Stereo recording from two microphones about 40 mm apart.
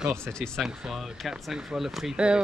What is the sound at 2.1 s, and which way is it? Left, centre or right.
Speech, right.